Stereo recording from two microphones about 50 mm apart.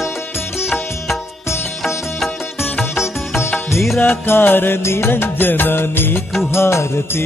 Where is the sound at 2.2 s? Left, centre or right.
Centre.